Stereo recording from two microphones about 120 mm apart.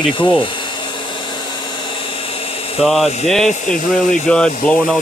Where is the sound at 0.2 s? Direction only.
40° left (ahead or behind).